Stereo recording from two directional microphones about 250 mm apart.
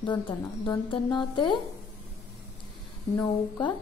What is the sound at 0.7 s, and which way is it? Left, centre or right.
Speech, centre.